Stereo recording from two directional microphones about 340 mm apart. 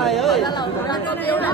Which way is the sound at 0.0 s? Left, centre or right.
Centre.